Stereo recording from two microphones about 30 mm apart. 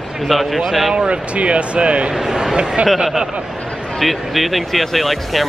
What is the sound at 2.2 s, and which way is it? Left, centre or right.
Speech, centre.